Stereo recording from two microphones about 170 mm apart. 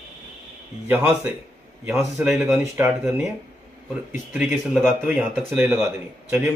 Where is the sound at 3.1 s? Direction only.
5° right (ahead or behind).